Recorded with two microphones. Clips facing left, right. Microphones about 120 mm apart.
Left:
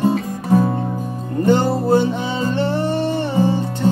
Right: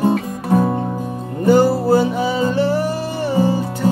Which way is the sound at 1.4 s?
5° right (ahead or behind).